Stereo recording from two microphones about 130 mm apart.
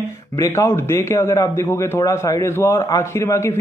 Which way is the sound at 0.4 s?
25° left (ahead or behind).